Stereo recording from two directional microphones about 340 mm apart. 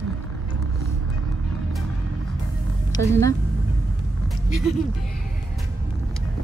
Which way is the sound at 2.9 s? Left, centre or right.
Centre.